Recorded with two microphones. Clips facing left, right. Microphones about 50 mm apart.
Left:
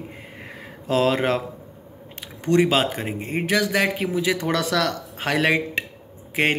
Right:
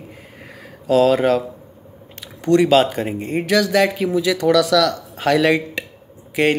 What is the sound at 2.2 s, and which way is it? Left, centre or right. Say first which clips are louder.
Speech: right 4 dB; left.